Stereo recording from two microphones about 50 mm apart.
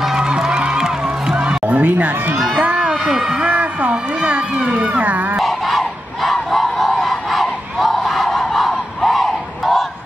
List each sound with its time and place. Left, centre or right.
0.0 s music: centre
0.3 s music: centre
2.3 s speech: centre
2.6 s a sound: right
3.2 s a man's voice: centre
3.4 s a sound: right
5.4 s honk: centre